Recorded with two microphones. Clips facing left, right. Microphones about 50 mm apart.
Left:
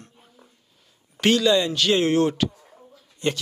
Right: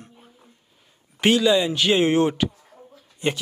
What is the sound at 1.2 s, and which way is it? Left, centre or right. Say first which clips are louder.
Speech: right 1 dB; centre.